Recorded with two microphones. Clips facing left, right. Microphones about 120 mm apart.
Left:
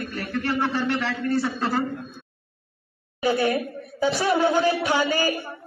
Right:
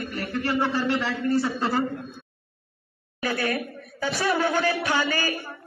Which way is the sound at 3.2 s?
20° left (ahead or behind).